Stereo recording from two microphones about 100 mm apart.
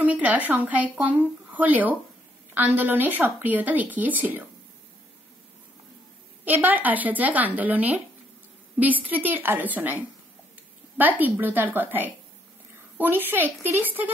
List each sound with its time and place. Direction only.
0.0 s speech: 15° right (ahead or behind)
6.4 s speech: 15° right (ahead or behind)
9.0 s a woman's voice: 15° right (ahead or behind)